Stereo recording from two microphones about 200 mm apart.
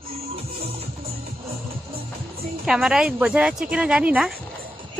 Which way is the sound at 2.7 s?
5° right (ahead or behind).